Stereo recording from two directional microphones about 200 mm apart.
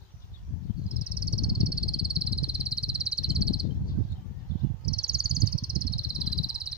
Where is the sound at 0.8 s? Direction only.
5° right (ahead or behind).